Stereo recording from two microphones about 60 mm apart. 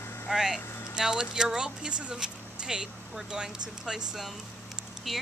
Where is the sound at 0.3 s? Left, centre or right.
Centre.